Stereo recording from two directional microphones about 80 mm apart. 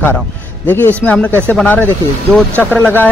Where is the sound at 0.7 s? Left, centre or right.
Left.